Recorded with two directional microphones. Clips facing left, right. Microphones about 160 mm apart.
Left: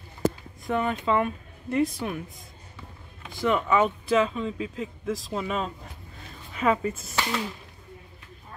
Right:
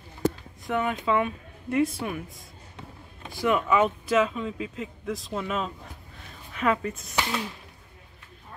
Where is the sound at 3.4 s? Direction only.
5° right (ahead or behind).